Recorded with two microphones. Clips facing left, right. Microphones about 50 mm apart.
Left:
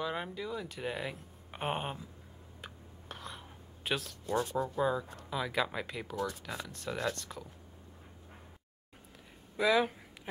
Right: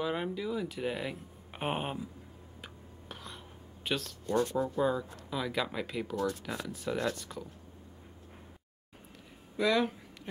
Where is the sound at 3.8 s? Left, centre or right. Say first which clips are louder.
Right 1 dB; centre.